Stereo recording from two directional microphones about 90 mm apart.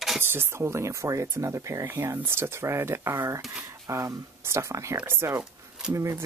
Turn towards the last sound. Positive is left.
turn(degrees=-30)  # may be behind; listen again after turning